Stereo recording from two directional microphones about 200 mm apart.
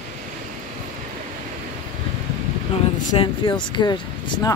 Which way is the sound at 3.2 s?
25° left (ahead or behind).